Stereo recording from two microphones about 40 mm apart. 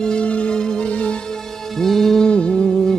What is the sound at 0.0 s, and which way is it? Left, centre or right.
Music, centre.